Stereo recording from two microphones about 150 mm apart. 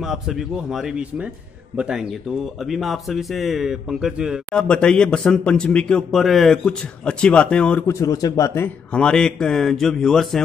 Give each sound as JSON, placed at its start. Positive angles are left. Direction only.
{"t": 0.0, "sound": "speech", "side_deg": 0}
{"t": 7.8, "sound": "speech", "side_deg": 20}